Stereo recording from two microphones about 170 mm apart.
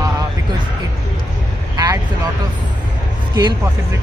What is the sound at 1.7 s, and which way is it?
Vehicle, 20° right (ahead or behind).